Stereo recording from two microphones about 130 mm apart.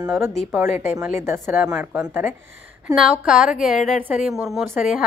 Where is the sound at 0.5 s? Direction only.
20° right (ahead or behind).